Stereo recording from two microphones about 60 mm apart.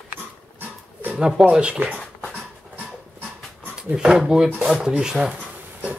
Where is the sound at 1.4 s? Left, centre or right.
Centre.